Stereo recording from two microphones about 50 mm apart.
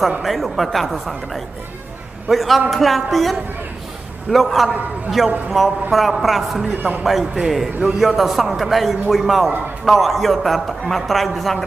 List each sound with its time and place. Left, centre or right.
0.2 s a man's voice: centre
6.8 s a man's voice: right
7.1 s a man's voice: centre